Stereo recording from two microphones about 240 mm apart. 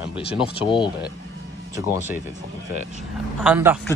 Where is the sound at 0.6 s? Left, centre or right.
Centre.